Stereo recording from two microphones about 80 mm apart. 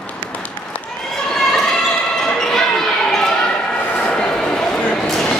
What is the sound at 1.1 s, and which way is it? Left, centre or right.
Basketball bounce, centre.